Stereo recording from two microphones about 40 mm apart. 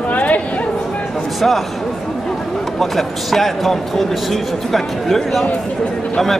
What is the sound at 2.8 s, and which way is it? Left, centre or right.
Speech, centre.